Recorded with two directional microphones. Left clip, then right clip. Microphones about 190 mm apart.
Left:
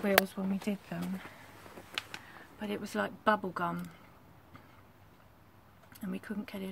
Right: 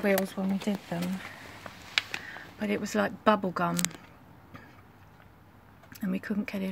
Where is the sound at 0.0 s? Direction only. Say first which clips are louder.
Right 1 dB; 10° right (ahead or behind).